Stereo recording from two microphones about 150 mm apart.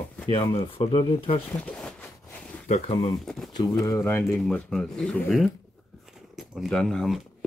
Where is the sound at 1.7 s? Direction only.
10° left (ahead or behind).